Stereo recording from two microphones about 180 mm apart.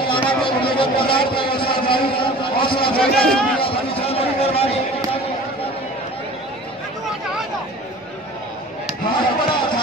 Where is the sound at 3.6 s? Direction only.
35° left (ahead or behind).